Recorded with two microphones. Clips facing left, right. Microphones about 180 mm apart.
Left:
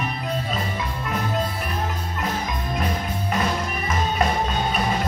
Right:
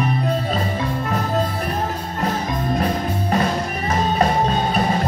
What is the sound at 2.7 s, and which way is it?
Music, 40° right (ahead or behind).